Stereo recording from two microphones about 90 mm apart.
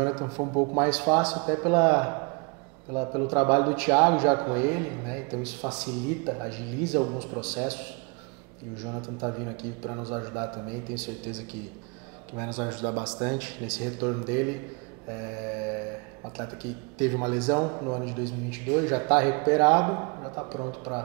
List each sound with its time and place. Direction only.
0.0 s a man's voice: 30° right (ahead or behind)
0.7 s a man's voice: 15° right (ahead or behind)
8.8 s a man's voice: 30° right (ahead or behind)
12.4 s speech: 15° right (ahead or behind)
15.1 s mantra: 25° right (ahead or behind)
17.0 s a man's voice: 20° right (ahead or behind)